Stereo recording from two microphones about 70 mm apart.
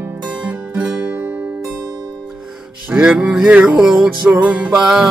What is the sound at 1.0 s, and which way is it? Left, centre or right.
Music, right.